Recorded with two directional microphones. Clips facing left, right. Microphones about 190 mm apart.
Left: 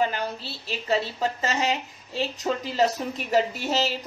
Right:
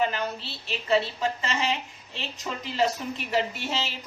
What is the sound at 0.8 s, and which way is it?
A woman's voice, 40° left (ahead or behind).